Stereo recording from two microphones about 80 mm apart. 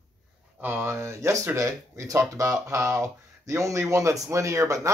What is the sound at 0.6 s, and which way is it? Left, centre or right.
Speech, right.